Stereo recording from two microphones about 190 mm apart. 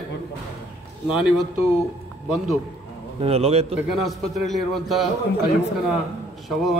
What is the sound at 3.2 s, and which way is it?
Speech, 30° right (ahead or behind).